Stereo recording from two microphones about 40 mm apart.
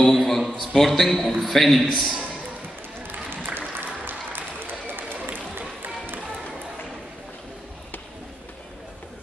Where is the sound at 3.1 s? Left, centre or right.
Right.